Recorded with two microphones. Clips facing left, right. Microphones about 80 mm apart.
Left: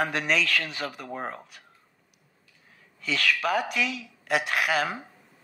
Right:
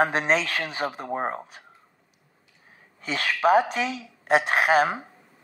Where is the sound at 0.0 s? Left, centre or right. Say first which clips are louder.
Right 4 dB; right.